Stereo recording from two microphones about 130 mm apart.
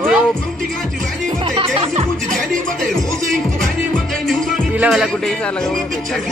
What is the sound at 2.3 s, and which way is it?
Music, 5° left (ahead or behind).